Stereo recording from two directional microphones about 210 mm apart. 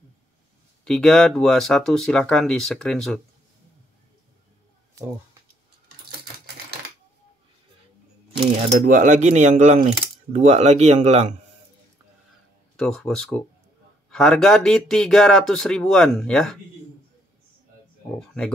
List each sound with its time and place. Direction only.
0.8 s speech: 5° left (ahead or behind)
8.6 s speech: 40° right (ahead or behind)
12.7 s speech: 5° left (ahead or behind)